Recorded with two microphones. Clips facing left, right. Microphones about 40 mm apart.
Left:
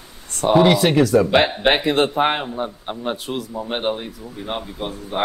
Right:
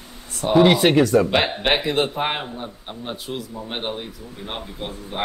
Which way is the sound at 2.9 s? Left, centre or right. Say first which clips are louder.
Left 6 dB; left.